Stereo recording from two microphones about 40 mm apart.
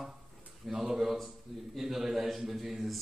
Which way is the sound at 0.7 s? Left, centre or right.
Centre.